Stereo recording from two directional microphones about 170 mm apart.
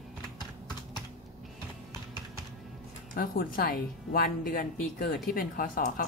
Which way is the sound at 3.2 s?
60° left (ahead or behind).